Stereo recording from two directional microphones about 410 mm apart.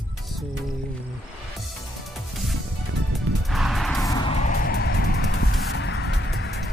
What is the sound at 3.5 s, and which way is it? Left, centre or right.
Music, centre.